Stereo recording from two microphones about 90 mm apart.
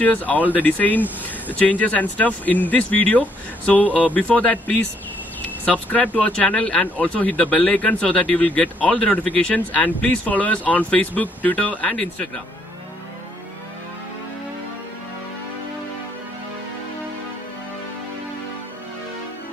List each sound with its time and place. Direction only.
0.0 s speech: 15° left (ahead or behind)
5.4 s a sound: 20° left (ahead or behind)
6.1 s speech: 15° left (ahead or behind)